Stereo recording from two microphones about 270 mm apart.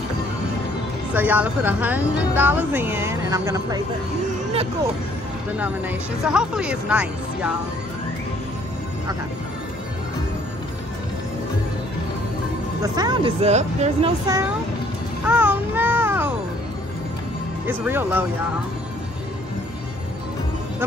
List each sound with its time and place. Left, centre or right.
1.1 s speech: centre
5.6 s speech: centre
12.8 s speech: centre
15.2 s music: centre
17.6 s speech: centre